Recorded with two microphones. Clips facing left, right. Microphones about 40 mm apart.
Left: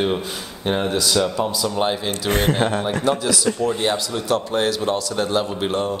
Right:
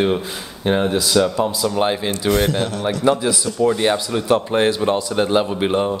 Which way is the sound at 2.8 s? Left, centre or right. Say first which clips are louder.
Right 3 dB; centre.